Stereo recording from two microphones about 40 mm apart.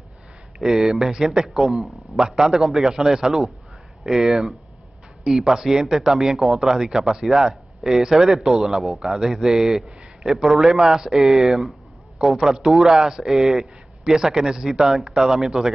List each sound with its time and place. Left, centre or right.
0.6 s speech: centre
1.5 s a man's voice: centre
2.1 s a man's voice: centre